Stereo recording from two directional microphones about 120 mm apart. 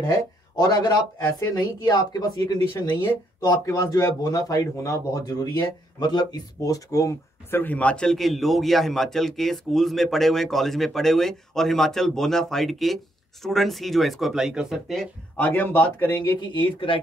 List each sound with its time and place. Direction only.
0.6 s a man's voice: 35° left (ahead or behind)
7.6 s a man's voice: 10° left (ahead or behind)
15.3 s speech: 15° left (ahead or behind)
16.3 s speech: 45° left (ahead or behind)